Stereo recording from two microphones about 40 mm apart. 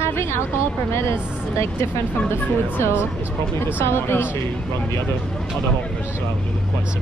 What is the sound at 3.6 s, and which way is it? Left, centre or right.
Speech, left.